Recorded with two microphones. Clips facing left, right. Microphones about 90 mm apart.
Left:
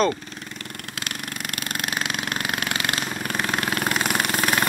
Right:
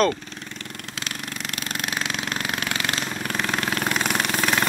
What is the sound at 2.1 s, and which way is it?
Engine, 5° left (ahead or behind).